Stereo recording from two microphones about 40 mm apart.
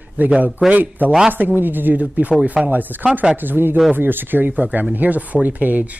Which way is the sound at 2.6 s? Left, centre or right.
Right.